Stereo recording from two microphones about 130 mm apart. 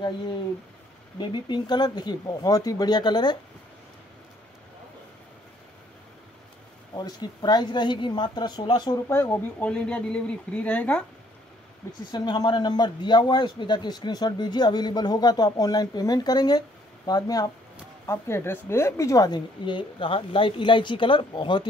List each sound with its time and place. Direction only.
1.1 s a man's voice: 35° left (ahead or behind)
7.0 s a man's voice: 30° left (ahead or behind)
9.1 s speech: 15° left (ahead or behind)
12.1 s a man's voice: 35° left (ahead or behind)